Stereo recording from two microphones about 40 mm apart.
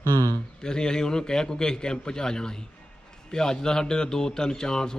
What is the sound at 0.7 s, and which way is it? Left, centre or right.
A man's voice, centre.